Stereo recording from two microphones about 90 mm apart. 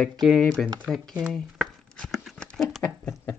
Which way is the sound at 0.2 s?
5° left (ahead or behind).